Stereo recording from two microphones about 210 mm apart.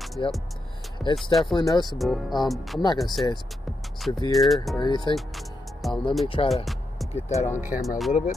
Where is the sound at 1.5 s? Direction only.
20° left (ahead or behind).